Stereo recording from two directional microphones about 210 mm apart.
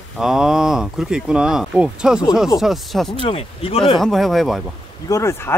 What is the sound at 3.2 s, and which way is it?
Speech, 25° left (ahead or behind).